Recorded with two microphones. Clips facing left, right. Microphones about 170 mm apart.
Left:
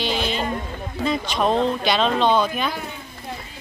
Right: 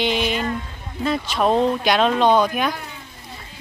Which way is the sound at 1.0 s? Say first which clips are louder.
Right 2 dB; 5° right (ahead or behind).